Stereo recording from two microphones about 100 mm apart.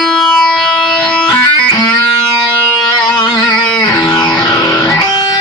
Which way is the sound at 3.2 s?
45° left (ahead or behind).